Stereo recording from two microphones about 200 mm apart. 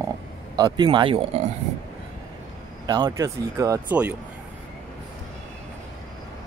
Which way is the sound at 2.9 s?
20° right (ahead or behind).